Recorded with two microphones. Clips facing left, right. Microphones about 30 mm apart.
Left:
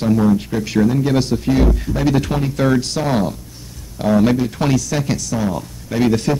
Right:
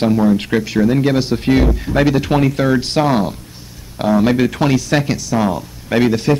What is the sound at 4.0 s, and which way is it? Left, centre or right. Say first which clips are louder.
Speech: right 1 dB; right.